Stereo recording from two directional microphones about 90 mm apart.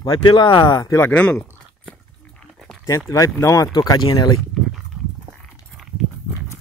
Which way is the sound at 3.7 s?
50° left (ahead or behind).